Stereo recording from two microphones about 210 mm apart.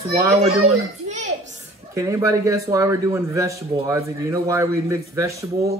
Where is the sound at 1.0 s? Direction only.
35° right (ahead or behind).